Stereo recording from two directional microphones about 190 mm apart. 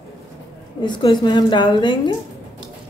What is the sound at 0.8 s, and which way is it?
A woman's voice, 25° left (ahead or behind).